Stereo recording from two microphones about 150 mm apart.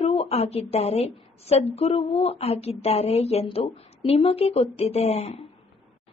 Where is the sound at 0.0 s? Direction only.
40° left (ahead or behind).